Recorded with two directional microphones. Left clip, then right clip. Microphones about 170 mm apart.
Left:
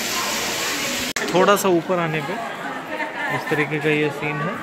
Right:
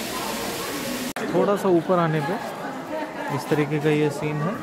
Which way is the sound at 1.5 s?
5° left (ahead or behind).